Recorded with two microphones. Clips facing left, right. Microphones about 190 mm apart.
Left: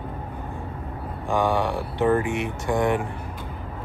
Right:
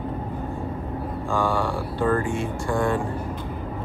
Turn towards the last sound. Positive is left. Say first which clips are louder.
# left 1 dB
turn(degrees=20)  # may be behind; listen again after turning